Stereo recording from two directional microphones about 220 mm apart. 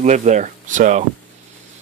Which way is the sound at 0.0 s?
30° right (ahead or behind).